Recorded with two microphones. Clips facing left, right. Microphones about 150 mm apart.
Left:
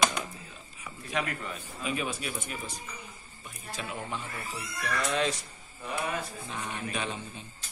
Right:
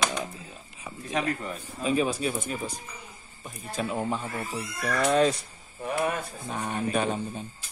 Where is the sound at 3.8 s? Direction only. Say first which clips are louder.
Right 8 dB; 40° right (ahead or behind).